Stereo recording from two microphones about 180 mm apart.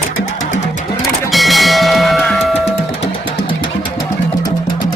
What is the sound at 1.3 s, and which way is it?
Music, centre (ahead or behind).